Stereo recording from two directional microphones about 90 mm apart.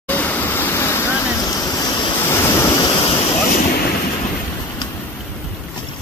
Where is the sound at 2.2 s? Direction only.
30° left (ahead or behind).